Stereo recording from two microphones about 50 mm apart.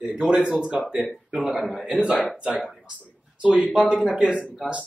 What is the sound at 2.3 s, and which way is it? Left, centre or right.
Speech, right.